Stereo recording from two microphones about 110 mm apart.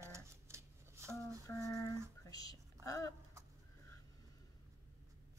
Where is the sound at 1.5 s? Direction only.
30° left (ahead or behind).